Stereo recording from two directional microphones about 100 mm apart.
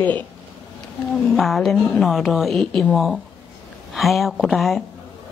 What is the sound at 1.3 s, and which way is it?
Speech, centre (ahead or behind).